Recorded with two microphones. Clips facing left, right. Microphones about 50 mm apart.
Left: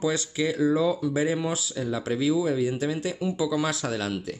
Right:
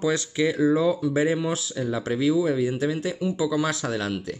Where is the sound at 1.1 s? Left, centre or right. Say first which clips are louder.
Right 3 dB; right.